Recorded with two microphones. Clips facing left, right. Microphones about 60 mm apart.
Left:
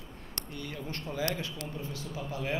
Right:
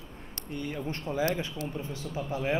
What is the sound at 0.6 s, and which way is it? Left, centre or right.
A man's voice, right.